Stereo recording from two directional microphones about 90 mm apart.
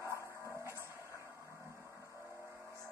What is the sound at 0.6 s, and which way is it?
Music, 35° right (ahead or behind).